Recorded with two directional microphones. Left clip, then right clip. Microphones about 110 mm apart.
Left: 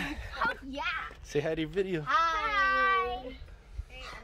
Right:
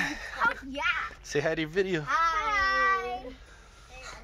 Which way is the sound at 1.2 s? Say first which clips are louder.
Right 2 dB; 25° right (ahead or behind).